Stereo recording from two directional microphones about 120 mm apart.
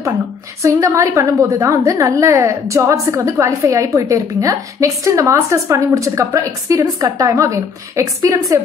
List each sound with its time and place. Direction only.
0.6 s a woman's voice: 25° right (ahead or behind)